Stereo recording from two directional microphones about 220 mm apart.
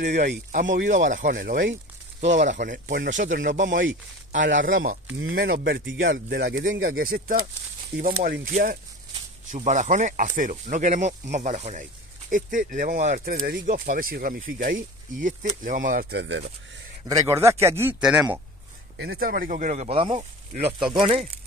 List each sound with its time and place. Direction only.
0.0 s speech: 35° right (ahead or behind); by 6.8 s 50° right (ahead or behind)
6.8 s speech: 40° right (ahead or behind)
17.0 s speech: 15° right (ahead or behind)
18.9 s speech: 45° right (ahead or behind); by 21.3 s 25° right (ahead or behind)